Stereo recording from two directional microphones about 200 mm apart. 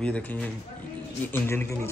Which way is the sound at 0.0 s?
5° left (ahead or behind).